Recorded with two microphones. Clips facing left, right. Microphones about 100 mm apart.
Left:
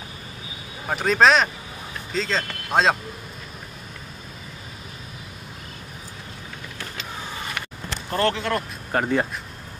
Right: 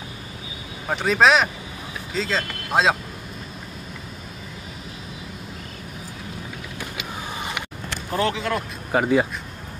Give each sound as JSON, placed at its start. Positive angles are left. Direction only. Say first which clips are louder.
{"t": 0.8, "sound": "speech", "louder": "even", "side_deg": 0}
{"t": 6.8, "sound": "a sound", "louder": "right 2 dB", "side_deg": -15}
{"t": 8.1, "sound": "speech", "louder": "left 1 dB", "side_deg": 0}